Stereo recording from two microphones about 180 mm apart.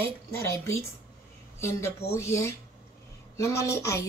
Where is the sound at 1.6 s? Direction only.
15° left (ahead or behind).